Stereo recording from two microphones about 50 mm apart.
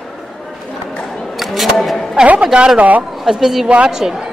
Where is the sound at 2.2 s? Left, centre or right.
Right.